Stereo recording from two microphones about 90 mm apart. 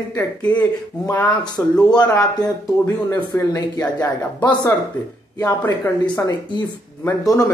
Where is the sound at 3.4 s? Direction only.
30° left (ahead or behind).